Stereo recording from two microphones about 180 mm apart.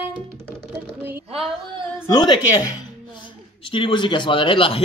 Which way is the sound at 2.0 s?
25° left (ahead or behind).